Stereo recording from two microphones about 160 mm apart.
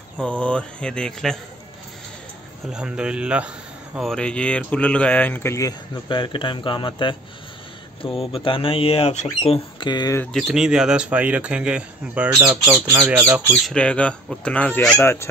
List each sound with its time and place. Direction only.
0.2 s speech: 5° left (ahead or behind)
2.7 s speech: 5° right (ahead or behind); by 10.1 s 25° left (ahead or behind)
10.3 s speech: 5° right (ahead or behind)
13.7 s speech: 5° left (ahead or behind)